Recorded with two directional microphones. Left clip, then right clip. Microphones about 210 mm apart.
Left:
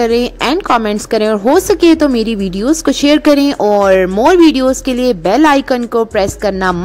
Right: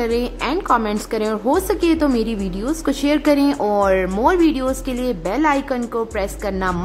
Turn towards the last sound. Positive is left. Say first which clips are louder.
# left 8 dB
turn(degrees=35)  # may be behind; listen again after turning